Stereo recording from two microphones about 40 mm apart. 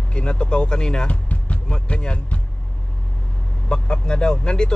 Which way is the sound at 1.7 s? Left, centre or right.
Left.